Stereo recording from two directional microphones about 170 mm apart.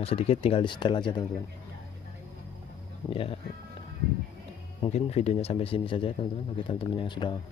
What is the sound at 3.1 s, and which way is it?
Speech, 35° left (ahead or behind).